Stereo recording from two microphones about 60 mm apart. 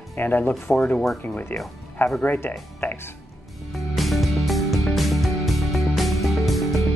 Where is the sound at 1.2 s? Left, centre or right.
Left.